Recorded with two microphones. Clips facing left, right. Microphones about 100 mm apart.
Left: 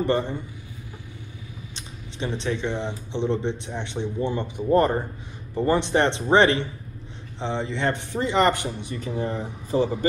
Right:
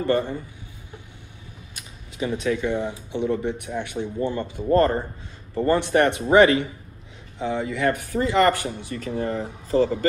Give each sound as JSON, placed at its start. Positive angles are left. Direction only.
{"t": 0.0, "sound": "speech", "side_deg": 20}
{"t": 1.8, "sound": "a sound", "side_deg": 30}
{"t": 2.7, "sound": "speech", "side_deg": -10}
{"t": 3.1, "sound": "speech", "side_deg": 25}